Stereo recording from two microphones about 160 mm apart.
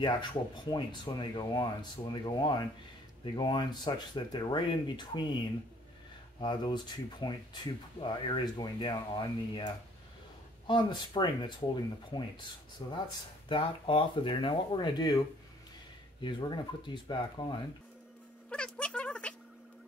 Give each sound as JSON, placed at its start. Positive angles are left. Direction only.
{"t": 0.0, "sound": "speech", "side_deg": 30}
{"t": 6.4, "sound": "speech", "side_deg": 30}
{"t": 10.7, "sound": "speech", "side_deg": 30}
{"t": 18.5, "sound": "a sound", "side_deg": 5}